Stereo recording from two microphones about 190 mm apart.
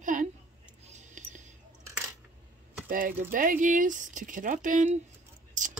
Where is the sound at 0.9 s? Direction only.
40° right (ahead or behind).